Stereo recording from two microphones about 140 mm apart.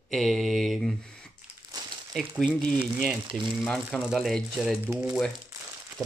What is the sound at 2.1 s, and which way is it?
Speech, 10° left (ahead or behind).